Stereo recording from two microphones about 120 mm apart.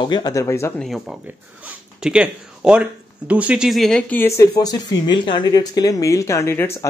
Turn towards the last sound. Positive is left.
turn(degrees=25)  # may be behind; listen again after turning